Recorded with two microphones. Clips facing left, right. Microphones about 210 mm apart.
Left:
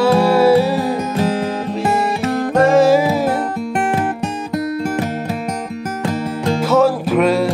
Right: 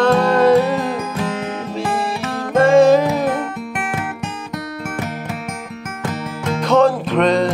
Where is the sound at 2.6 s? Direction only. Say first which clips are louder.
Right 1 dB; 5° left (ahead or behind).